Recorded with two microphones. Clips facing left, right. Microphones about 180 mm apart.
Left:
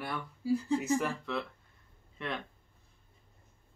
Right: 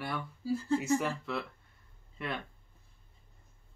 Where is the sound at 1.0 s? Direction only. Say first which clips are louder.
Even; 5° right (ahead or behind).